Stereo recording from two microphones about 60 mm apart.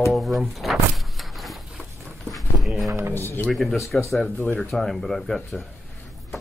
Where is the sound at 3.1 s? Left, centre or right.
Left.